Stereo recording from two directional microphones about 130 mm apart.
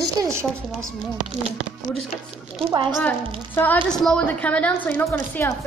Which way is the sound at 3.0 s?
15° left (ahead or behind).